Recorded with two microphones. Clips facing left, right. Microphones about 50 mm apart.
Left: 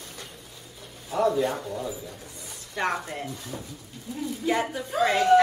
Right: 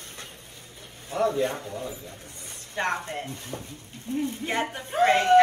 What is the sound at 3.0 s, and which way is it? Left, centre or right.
Speech, right.